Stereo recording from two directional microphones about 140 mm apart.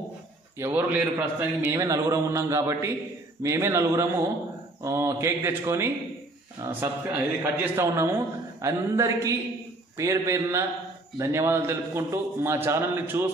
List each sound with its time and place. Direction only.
0.6 s a man's voice: 15° right (ahead or behind)